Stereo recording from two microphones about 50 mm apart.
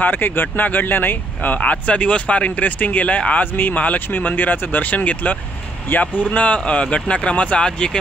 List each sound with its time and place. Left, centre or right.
0.0 s speech: left
1.6 s speech: left